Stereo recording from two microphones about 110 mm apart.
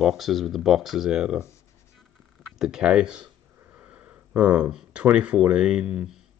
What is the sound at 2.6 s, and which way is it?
Speech, 5° right (ahead or behind).